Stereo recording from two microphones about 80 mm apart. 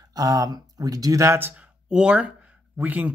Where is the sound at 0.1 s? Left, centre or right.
Right.